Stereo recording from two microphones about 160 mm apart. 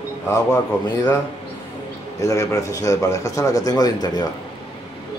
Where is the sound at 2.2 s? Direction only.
20° left (ahead or behind).